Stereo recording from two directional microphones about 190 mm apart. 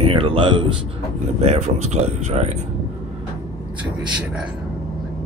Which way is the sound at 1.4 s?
35° right (ahead or behind).